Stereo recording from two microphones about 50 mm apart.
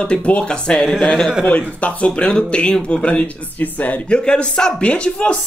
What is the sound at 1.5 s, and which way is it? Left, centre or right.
Speech, left.